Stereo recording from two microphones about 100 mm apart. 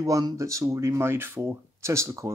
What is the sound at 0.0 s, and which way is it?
Speech, 35° right (ahead or behind).